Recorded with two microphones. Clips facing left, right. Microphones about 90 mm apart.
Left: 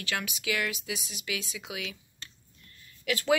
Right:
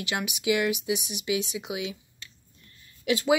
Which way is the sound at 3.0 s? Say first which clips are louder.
Right 4 dB; 20° right (ahead or behind).